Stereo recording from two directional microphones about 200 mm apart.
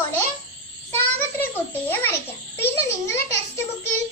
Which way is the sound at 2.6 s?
15° left (ahead or behind).